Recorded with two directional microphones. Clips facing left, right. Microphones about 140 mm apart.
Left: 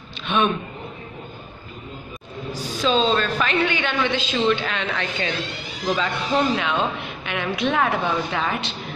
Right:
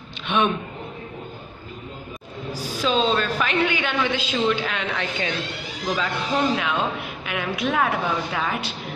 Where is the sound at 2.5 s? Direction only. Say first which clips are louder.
Left 2 dB; 10° right (ahead or behind).